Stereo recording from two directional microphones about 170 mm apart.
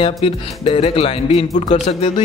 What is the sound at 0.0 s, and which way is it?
Speech, 35° left (ahead or behind).